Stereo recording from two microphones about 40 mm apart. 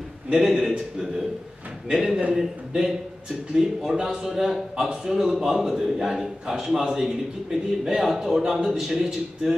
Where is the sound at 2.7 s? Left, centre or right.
Right.